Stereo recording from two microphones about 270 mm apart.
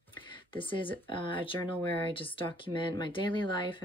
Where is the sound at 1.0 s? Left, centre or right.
Centre.